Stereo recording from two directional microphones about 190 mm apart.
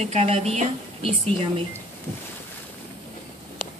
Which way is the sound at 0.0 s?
35° right (ahead or behind).